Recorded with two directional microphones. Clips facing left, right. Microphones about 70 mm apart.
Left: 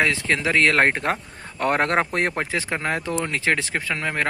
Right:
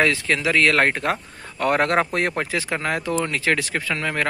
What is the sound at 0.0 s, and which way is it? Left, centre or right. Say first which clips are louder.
A man's voice: right 1 dB; left.